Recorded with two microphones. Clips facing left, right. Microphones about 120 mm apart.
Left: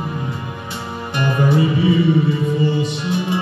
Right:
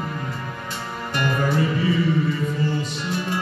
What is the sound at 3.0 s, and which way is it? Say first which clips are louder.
Music: left 5 dB; 15° left (ahead or behind).